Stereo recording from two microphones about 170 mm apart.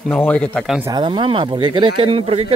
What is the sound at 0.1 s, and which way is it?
Speech, 10° left (ahead or behind).